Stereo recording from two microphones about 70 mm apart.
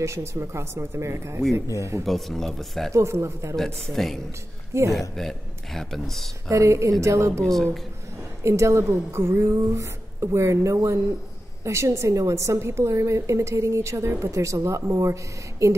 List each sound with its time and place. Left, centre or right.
0.0 s speech: right
2.0 s speech: centre
2.9 s a woman's voice: right
3.5 s speech: centre
4.7 s speech: right
5.1 s speech: centre
6.5 s a woman's voice: right
7.4 s speech: centre
8.5 s a woman's voice: right